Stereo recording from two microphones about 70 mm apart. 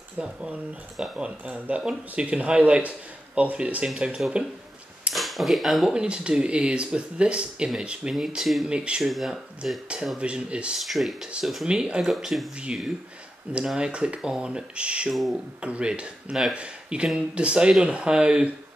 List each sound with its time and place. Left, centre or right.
0.2 s speech: centre
5.1 s speech: centre
5.9 s speech: centre
8.4 s speech: centre
8.6 s speech: centre
9.0 s speech: centre
9.6 s speech: centre
10.8 s speech: centre
15.0 s speech: centre
15.6 s speech: centre